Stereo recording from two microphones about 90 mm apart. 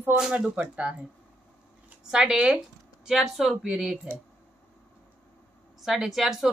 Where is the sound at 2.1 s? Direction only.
10° right (ahead or behind).